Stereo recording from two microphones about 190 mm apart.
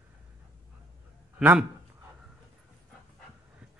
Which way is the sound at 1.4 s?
10° right (ahead or behind).